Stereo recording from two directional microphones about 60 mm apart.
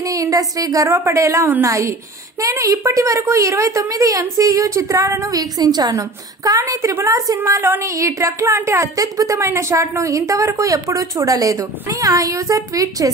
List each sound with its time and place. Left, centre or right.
0.0 s speech: right
0.8 s a woman's voice: right
2.6 s a woman's voice: right
5.2 s a woman's voice: right
7.1 s a woman's voice: right
9.4 s a woman's voice: right